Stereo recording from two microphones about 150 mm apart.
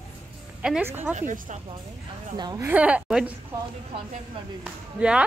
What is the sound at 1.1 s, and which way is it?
Speech, 60° right (ahead or behind).